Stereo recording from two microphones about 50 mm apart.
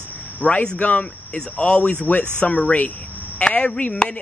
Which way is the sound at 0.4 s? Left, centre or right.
Left.